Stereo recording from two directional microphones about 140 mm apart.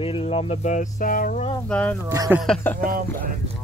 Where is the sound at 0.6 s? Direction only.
60° left (ahead or behind).